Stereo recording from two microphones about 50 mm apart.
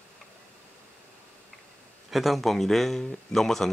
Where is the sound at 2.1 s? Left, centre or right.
Centre.